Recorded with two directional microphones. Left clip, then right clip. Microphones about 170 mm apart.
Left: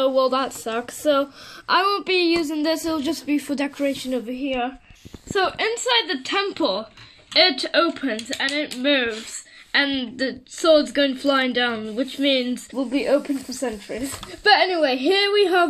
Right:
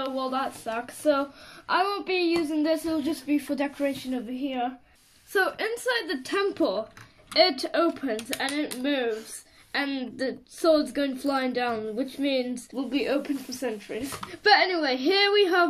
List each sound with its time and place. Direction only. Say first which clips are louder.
0.1 s a woman's voice: left 9 dB; 65° left (ahead or behind)
5.3 s speech: left 4 dB; 35° left (ahead or behind)
13.6 s a woman's voice: left 4 dB; 30° left (ahead or behind)